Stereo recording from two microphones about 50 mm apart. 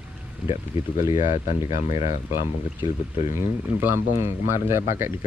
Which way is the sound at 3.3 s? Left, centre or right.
Right.